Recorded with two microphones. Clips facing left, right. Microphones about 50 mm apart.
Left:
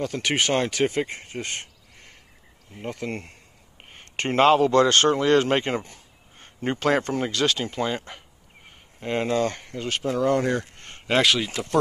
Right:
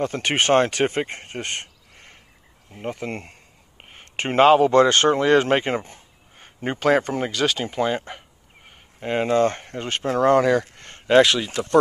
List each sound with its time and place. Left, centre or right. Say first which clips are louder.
0.0 s speech: right 3 dB; right
2.7 s a man's voice: right 2 dB; centre
3.9 s a sound: right 2 dB; centre
4.7 s a man's voice: right 2 dB; centre
6.3 s a man's voice: even; centre
8.6 s a sound: right 2 dB; centre
9.4 s speech: right 5 dB; right
10.0 s speech: right 4 dB; right
10.3 s speech: right 6 dB; right
10.9 s speech: right 5 dB; centre